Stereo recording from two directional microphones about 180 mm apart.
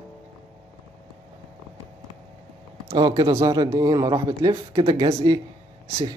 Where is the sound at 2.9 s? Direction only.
25° right (ahead or behind).